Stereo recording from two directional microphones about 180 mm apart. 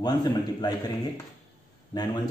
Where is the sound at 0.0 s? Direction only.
20° left (ahead or behind).